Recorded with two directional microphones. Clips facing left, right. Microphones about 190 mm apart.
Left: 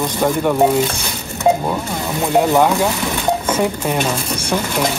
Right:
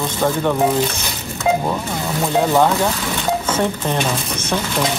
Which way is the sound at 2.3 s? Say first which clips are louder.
Left 2 dB; 15° left (ahead or behind).